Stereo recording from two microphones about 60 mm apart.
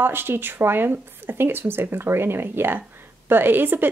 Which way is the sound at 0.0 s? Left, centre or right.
Right.